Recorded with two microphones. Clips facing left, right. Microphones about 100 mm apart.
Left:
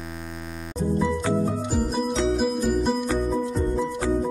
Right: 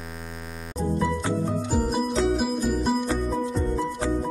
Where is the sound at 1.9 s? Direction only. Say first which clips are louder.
Even; centre (ahead or behind).